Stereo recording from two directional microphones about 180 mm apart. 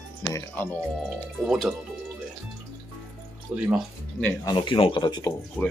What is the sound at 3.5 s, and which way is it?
Speech, 5° right (ahead or behind).